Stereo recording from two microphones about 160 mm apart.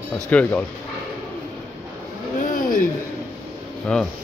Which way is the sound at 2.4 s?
60° left (ahead or behind).